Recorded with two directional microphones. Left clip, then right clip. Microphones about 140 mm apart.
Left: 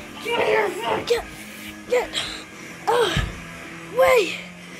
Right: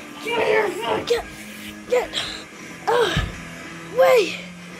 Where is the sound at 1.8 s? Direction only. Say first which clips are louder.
Right 1 dB; centre (ahead or behind).